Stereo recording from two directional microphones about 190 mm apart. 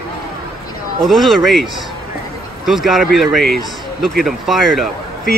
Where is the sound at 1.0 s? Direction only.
Centre (ahead or behind).